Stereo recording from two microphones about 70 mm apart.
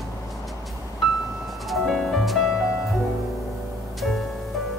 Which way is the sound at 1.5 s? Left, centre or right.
Centre.